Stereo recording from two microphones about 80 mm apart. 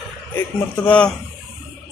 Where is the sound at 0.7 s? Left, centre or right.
Centre.